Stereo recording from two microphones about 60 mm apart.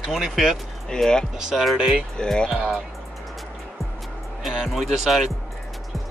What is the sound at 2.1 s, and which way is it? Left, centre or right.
Speech, centre.